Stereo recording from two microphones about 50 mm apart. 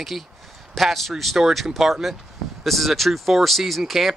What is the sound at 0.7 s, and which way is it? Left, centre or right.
Speech, centre.